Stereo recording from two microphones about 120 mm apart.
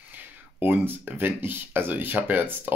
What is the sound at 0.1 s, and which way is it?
Speech, 15° right (ahead or behind).